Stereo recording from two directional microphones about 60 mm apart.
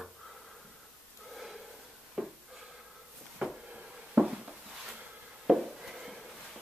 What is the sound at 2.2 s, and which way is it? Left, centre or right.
Wood, centre.